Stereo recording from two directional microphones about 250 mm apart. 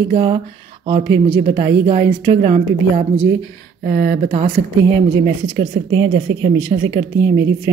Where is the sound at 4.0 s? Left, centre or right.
Right.